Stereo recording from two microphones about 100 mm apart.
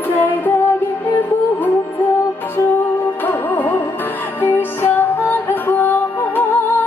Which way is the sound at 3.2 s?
20° left (ahead or behind).